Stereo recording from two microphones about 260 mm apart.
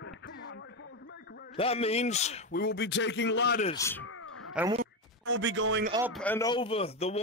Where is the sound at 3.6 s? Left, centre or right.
Centre.